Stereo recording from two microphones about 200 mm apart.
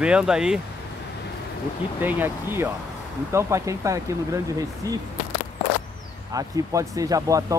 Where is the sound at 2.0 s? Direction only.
10° right (ahead or behind).